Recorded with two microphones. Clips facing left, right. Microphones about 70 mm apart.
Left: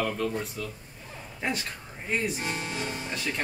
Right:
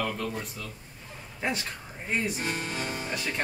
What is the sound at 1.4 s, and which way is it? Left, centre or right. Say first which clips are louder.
Speech: even; centre.